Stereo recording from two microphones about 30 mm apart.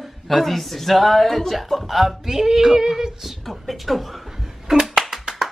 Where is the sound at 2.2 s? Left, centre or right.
Centre.